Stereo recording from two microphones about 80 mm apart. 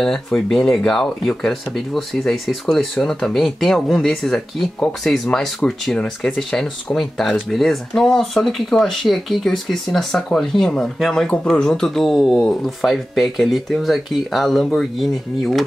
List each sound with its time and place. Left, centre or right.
0.0 s speech: centre